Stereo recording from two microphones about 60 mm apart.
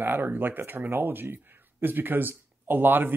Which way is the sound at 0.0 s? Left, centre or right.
Right.